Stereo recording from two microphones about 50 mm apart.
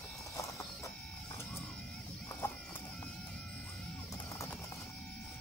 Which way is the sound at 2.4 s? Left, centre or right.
Left.